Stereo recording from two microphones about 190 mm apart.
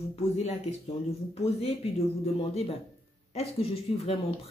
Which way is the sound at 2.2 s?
30° left (ahead or behind).